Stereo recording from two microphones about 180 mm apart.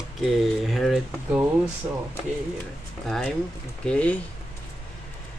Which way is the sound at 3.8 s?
5° left (ahead or behind).